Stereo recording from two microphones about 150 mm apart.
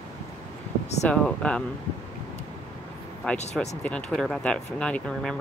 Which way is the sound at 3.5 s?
5° left (ahead or behind).